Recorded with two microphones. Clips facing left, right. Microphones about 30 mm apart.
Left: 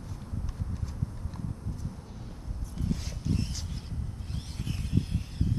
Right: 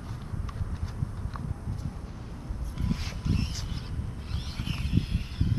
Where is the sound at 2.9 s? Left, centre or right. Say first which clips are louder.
Right 1 dB; right.